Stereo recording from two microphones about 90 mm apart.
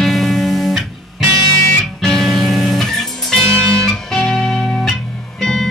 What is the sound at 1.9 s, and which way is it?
Music, 5° left (ahead or behind).